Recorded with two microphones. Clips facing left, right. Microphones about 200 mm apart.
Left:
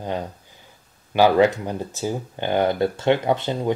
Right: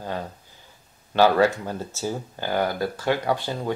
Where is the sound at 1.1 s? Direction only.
15° left (ahead or behind).